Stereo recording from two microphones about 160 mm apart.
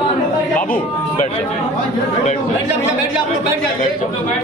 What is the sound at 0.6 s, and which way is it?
Speech, 55° left (ahead or behind).